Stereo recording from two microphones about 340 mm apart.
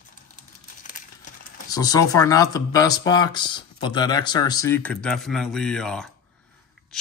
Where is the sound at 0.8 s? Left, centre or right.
Left.